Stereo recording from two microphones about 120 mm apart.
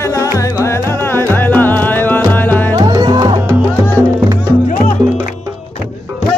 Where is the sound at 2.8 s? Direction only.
35° right (ahead or behind).